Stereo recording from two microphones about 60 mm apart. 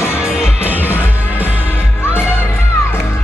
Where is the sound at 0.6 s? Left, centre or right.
Right.